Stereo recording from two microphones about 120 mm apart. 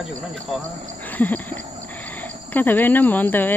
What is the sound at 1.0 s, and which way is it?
Speech, 15° left (ahead or behind).